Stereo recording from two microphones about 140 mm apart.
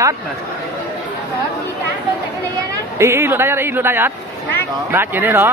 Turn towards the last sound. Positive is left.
turn(degrees=-15)  # may be behind; listen again after turning